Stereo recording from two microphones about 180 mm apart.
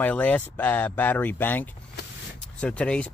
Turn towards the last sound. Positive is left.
turn(degrees=5)  # may be behind; listen again after turning